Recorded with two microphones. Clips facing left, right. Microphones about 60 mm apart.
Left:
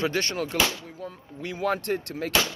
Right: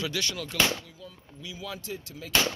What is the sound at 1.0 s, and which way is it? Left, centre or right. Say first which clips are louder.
Speech: left 8 dB; left.